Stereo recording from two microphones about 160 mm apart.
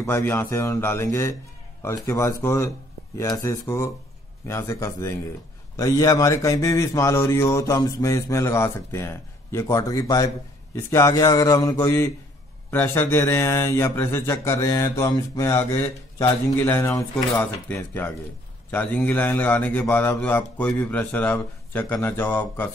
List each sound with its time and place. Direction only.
0.0 s a man's voice: 15° left (ahead or behind)